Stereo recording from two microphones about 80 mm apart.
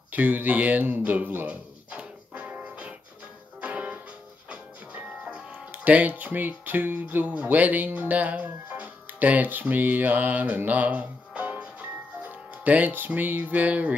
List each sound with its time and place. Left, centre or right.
0.1 s a sound: right
3.6 s music: centre
4.5 s speech: centre